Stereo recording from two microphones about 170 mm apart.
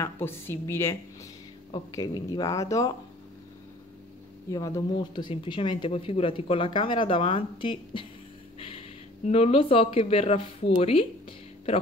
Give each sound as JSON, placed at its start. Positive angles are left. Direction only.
{"t": 0.0, "sound": "a woman's voice", "side_deg": 15}
{"t": 4.5, "sound": "speech", "side_deg": 20}
{"t": 8.5, "sound": "a sound", "side_deg": 30}
{"t": 9.3, "sound": "speech", "side_deg": 35}